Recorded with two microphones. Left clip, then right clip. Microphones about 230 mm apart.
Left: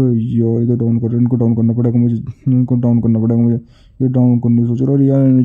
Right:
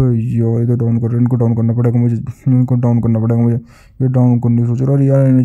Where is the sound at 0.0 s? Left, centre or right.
Centre.